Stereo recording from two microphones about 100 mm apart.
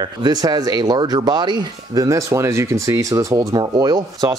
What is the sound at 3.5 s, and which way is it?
Speech, 40° right (ahead or behind).